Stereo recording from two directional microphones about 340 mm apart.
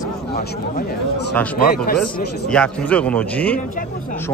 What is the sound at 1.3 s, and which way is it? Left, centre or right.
Speech, centre.